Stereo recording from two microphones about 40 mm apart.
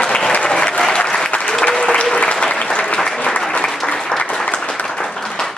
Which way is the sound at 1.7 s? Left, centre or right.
Centre.